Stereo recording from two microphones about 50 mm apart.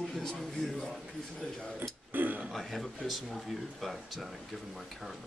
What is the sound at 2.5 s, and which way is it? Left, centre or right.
Speech, centre.